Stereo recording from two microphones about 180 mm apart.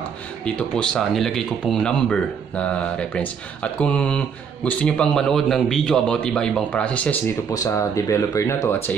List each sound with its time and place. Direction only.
0.5 s speech: 5° left (ahead or behind)
7.5 s speech: 20° left (ahead or behind)